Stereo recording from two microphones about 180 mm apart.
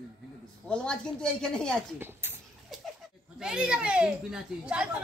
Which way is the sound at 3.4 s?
5° right (ahead or behind).